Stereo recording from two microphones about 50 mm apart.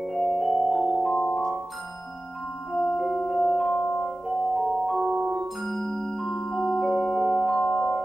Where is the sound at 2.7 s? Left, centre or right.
Centre.